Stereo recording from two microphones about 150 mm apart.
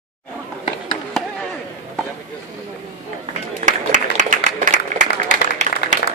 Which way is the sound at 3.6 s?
55° right (ahead or behind).